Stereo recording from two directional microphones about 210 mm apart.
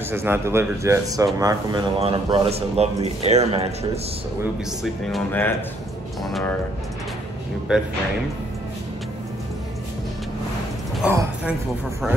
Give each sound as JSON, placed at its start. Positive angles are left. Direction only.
{"t": 0.1, "sound": "speech", "side_deg": -10}
{"t": 4.8, "sound": "speech", "side_deg": 0}
{"t": 7.7, "sound": "speech", "side_deg": -5}
{"t": 11.0, "sound": "a sound", "side_deg": -10}